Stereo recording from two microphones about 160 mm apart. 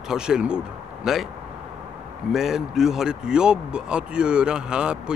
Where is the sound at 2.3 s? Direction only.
5° right (ahead or behind).